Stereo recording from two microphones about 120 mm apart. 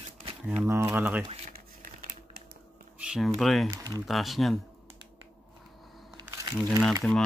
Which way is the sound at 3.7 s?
25° right (ahead or behind).